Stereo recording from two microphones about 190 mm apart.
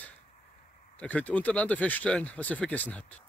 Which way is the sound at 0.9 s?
10° left (ahead or behind).